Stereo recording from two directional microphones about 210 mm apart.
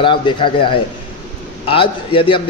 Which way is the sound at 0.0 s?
25° left (ahead or behind).